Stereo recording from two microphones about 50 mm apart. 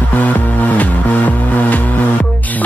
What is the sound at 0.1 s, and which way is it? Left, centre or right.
Music, left.